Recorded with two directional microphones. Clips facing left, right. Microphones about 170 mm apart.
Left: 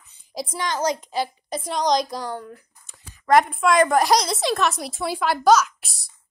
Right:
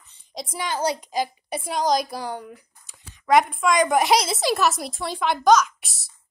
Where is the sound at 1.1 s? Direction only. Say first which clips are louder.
Even; 10° right (ahead or behind).